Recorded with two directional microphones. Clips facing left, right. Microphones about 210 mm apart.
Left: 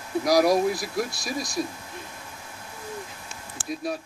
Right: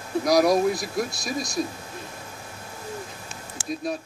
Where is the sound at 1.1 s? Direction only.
20° right (ahead or behind).